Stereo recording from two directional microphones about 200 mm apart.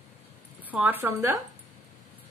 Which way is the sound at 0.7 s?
10° right (ahead or behind).